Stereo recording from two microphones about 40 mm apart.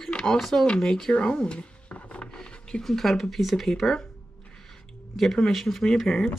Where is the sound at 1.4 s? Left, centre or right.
Left.